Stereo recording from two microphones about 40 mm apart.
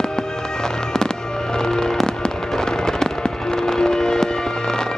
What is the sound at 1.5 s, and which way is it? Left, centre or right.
Fireworks, centre.